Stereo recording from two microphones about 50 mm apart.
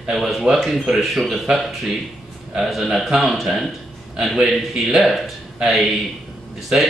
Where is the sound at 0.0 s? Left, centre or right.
Centre.